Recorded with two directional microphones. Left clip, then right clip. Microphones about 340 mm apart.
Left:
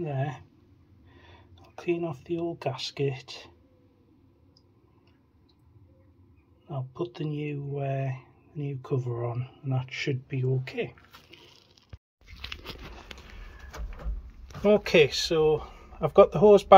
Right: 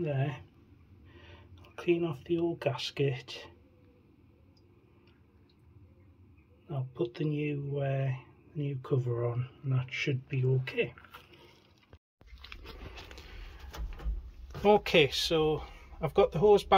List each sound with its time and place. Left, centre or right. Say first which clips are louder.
0.0 s speech: left 2 dB; centre
7.0 s speech: right 1 dB; centre
9.2 s speech: even; right
9.9 s speech: left 1 dB; centre
12.3 s a sound: left 9 dB; left
14.6 s speech: left 3 dB; centre